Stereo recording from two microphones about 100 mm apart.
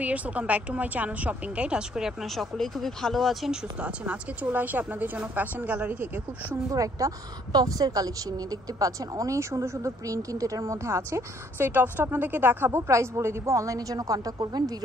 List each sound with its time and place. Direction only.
0.0 s speech: 15° right (ahead or behind)
3.8 s speech: 10° right (ahead or behind)
6.7 s speech: 35° right (ahead or behind)